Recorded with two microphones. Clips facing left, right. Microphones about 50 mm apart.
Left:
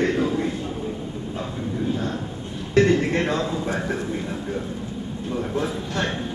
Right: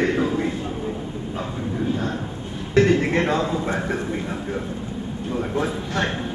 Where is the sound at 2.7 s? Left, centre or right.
Right.